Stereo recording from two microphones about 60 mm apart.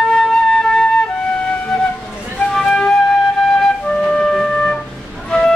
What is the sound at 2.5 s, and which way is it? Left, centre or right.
Flute, centre.